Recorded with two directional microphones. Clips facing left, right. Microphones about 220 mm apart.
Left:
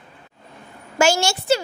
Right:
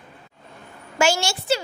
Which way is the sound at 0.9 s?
45° left (ahead or behind).